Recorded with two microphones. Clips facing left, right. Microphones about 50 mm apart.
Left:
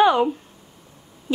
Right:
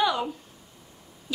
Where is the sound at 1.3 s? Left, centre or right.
Left.